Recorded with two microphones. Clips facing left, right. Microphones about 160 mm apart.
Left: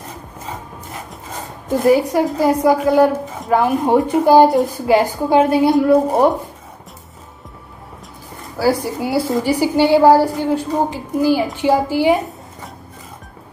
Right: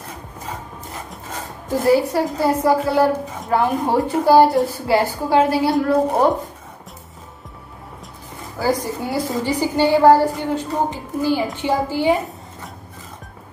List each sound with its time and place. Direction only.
1.9 s a woman's voice: 15° left (ahead or behind)
8.5 s a woman's voice: 10° left (ahead or behind)